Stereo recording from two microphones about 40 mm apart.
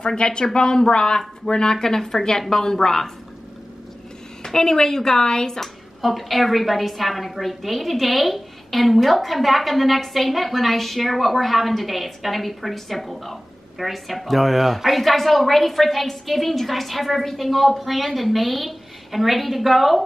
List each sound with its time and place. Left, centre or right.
0.0 s a woman's voice: left
4.4 s a woman's voice: centre
5.9 s a woman's voice: centre